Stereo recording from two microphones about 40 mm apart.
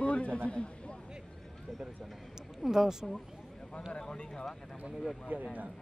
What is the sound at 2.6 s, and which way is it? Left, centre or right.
Speech, centre.